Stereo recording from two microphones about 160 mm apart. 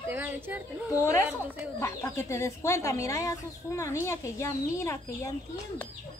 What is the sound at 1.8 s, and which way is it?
A woman's voice, 15° left (ahead or behind).